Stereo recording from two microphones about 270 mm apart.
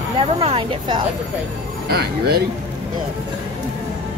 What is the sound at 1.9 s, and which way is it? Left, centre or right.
Speech, right.